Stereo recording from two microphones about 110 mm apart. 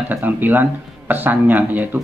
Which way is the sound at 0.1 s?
15° right (ahead or behind).